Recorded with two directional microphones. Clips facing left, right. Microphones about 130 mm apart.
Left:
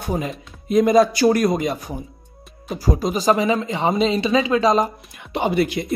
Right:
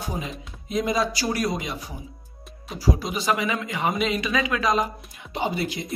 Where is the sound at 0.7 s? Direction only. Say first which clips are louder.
Left 10 dB; 55° left (ahead or behind); by 4.7 s 30° left (ahead or behind).